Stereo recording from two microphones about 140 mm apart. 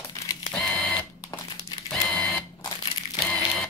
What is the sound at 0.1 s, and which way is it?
Camera, 25° left (ahead or behind).